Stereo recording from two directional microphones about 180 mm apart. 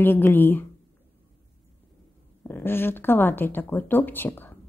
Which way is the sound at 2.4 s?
10° left (ahead or behind).